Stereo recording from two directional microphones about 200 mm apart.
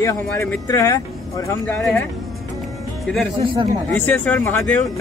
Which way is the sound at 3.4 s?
25° right (ahead or behind).